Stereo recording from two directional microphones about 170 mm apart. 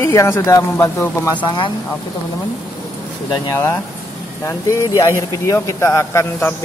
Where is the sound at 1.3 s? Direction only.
25° left (ahead or behind).